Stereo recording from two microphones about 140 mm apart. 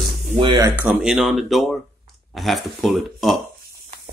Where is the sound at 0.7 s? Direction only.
10° right (ahead or behind).